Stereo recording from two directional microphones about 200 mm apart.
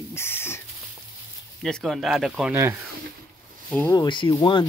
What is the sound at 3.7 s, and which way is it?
Speech, 10° left (ahead or behind).